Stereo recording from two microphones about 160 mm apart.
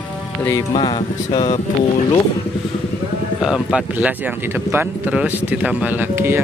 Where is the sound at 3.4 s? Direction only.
5° right (ahead or behind).